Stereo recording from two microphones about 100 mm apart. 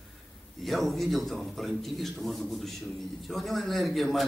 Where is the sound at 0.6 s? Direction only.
Centre (ahead or behind).